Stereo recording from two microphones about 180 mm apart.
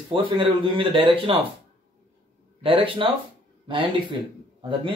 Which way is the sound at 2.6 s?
30° right (ahead or behind).